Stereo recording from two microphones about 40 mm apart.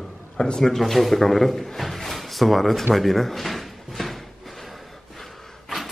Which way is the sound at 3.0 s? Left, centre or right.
Centre.